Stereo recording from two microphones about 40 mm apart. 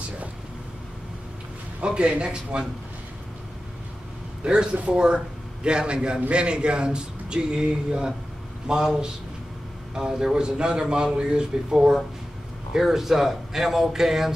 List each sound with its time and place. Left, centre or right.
1.8 s speech: right
4.4 s a man's voice: right; by 14.3 s centre